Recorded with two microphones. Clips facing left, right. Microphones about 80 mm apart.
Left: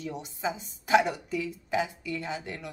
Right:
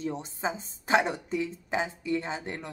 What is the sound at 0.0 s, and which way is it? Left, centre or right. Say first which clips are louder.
Speech: right 1 dB; right.